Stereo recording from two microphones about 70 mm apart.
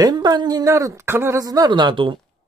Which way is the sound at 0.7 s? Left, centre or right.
Right.